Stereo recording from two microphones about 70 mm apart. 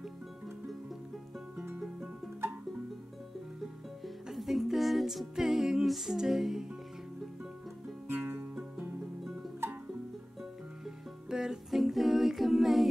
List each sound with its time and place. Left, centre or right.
4.0 s music: centre
8.1 s music: right
11.2 s music: centre